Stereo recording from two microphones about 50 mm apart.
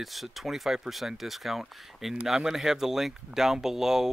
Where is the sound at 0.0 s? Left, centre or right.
Centre.